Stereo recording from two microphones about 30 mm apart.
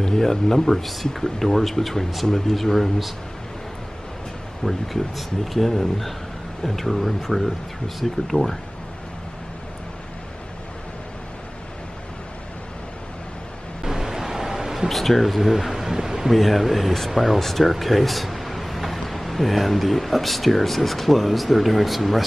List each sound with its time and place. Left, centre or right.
0.0 s speech: centre
0.7 s speech: centre
4.6 s speech: centre
13.8 s a sound: centre
14.9 s speech: centre
16.3 s speech: centre
17.4 s speech: centre